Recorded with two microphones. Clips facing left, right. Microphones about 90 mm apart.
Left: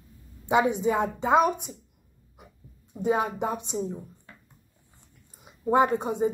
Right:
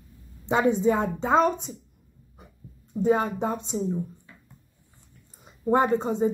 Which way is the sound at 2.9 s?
15° left (ahead or behind).